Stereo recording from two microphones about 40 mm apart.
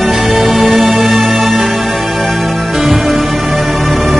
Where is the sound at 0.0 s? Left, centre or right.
Centre.